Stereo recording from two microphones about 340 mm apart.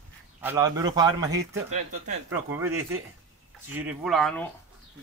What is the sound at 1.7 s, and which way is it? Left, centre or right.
Speech, right.